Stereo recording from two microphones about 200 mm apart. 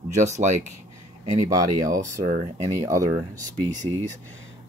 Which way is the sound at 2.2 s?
35° right (ahead or behind).